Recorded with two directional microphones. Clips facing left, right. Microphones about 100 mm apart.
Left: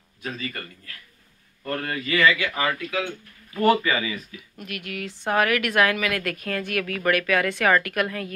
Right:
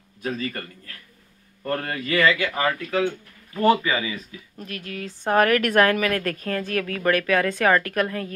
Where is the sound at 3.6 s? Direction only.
20° right (ahead or behind).